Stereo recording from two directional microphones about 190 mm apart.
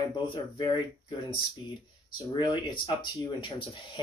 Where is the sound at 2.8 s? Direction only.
25° left (ahead or behind).